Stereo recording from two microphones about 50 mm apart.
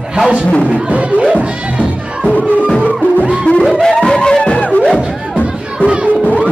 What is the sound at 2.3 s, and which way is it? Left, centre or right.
Music, centre.